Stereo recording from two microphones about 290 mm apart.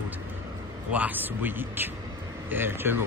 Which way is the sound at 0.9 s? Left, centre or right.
Centre.